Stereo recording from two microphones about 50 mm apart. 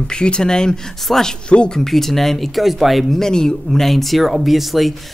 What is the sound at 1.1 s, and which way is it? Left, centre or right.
Speech, centre.